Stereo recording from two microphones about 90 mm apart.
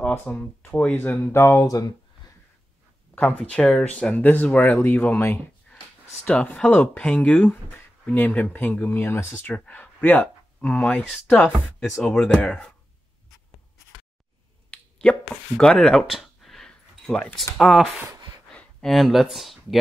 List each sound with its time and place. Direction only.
0.1 s speech: 20° left (ahead or behind)
1.3 s speech: 30° left (ahead or behind)
3.2 s speech: 15° left (ahead or behind)
5.7 s a sound: 15° left (ahead or behind)
6.2 s speech: 10° left (ahead or behind)
9.2 s speech: 30° left (ahead or behind)
9.5 s speech: 15° left (ahead or behind)
11.3 s speech: 5° left (ahead or behind)
14.7 s a sound: 10° left (ahead or behind)
17.6 s speech: centre (ahead or behind)